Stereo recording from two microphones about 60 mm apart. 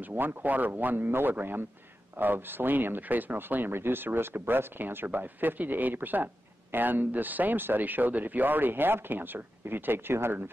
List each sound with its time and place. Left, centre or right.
0.1 s speech: right